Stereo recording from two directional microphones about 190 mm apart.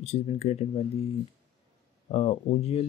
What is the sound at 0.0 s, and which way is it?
Speech, 30° left (ahead or behind).